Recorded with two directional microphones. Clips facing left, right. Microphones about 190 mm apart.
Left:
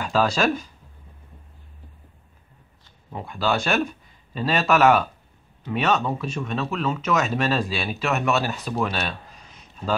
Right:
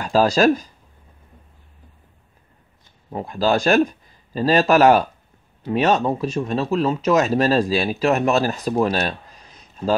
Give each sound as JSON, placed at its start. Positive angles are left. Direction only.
{"t": 0.0, "sound": "speech", "side_deg": -40}
{"t": 3.1, "sound": "a man's voice", "side_deg": -40}